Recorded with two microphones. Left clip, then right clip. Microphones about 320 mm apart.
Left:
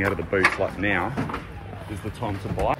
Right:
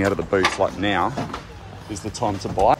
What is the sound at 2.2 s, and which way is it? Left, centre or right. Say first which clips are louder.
Speech: right 7 dB; centre.